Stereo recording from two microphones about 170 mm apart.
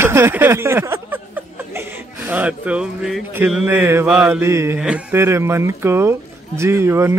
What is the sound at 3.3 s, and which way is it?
Mantra, 10° right (ahead or behind).